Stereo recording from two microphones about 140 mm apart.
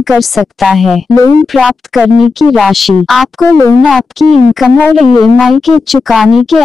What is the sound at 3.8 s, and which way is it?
Speech, centre (ahead or behind).